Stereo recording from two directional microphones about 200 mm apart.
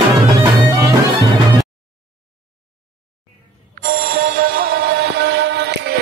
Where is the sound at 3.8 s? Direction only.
45° right (ahead or behind).